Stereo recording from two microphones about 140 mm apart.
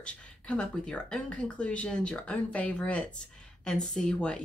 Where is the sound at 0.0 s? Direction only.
5° left (ahead or behind).